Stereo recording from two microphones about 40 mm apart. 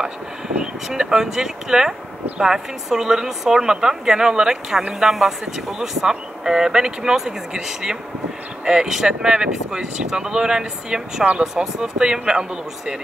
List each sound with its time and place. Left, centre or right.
0.8 s speech: centre
5.0 s speech: centre